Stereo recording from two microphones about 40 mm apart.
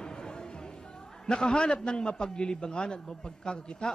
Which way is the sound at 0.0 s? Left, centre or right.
Left.